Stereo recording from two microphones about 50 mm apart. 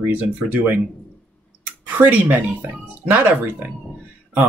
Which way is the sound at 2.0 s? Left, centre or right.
Right.